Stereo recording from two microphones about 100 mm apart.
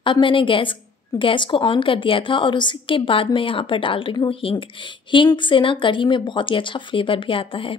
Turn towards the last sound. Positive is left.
turn(degrees=65)  # may be behind; listen again after turning